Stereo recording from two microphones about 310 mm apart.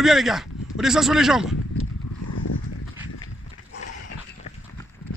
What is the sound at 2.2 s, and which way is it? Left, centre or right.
Clip-clop, left.